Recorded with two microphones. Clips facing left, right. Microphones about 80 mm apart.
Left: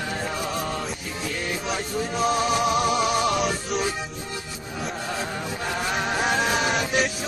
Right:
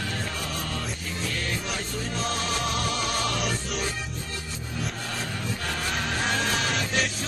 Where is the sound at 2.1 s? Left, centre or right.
Centre.